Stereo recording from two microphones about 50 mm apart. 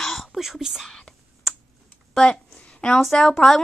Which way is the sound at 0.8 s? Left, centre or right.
Centre.